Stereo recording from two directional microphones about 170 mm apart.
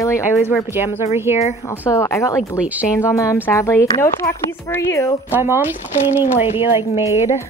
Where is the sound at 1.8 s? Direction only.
15° left (ahead or behind).